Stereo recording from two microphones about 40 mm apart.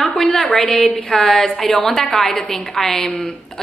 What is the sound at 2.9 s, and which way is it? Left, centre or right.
Speech, left.